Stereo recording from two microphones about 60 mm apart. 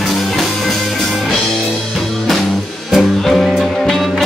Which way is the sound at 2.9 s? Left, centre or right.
Centre.